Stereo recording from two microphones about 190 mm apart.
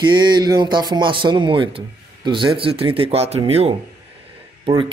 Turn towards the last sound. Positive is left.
turn(degrees=-30)  # may be behind; listen again after turning